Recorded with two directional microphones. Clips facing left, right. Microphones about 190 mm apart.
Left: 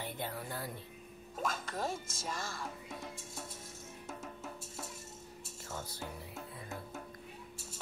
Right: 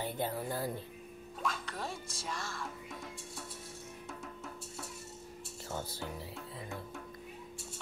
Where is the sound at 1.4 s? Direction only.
45° left (ahead or behind).